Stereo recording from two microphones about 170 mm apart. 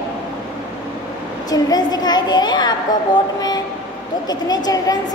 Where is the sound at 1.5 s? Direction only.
25° left (ahead or behind).